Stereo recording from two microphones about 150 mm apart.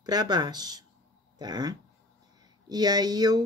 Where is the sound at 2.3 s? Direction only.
25° right (ahead or behind).